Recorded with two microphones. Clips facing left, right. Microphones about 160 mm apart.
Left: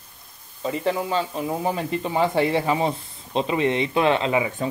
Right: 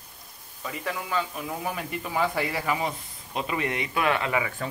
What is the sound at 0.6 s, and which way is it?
Speech, 30° left (ahead or behind).